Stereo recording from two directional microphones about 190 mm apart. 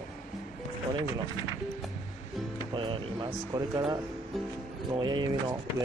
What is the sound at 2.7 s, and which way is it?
Speech, 25° right (ahead or behind).